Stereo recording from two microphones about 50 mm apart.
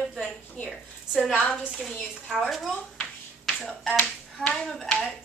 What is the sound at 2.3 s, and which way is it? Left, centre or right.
Speech, centre.